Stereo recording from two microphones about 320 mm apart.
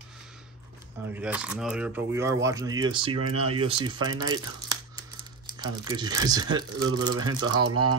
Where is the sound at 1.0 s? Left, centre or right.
Centre.